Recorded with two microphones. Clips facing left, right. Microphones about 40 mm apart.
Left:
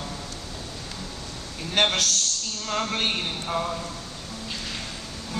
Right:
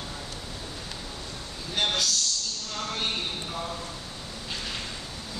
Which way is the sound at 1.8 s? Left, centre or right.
Left.